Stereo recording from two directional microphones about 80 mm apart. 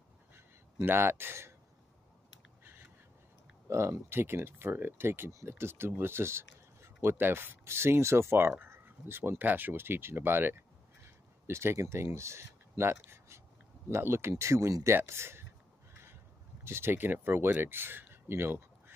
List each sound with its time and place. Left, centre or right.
0.8 s speech: right
3.6 s speech: right
15.9 s a sound: right
16.6 s speech: right